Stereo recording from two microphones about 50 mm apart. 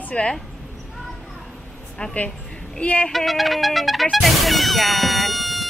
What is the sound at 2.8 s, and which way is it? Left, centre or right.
Speech, left.